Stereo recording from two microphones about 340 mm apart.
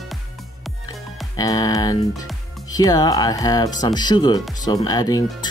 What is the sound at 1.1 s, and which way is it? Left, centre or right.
Speech, centre.